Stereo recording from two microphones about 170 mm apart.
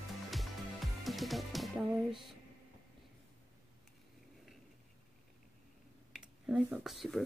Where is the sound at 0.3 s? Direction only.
Centre (ahead or behind).